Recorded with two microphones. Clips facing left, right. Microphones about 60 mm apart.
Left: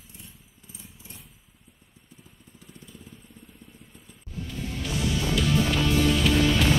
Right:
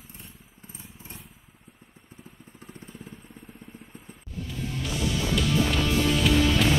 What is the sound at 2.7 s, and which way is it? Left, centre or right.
Vehicle, right.